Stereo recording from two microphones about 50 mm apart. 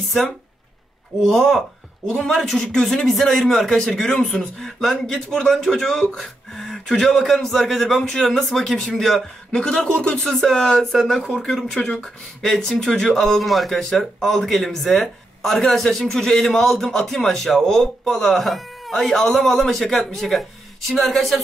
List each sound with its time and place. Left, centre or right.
1.2 s speech: centre
3.1 s a man's voice: centre
4.2 s speech: left
4.6 s a man's voice: centre
9.5 s speech: centre
10.2 s a man's voice: centre
11.6 s a man's voice: centre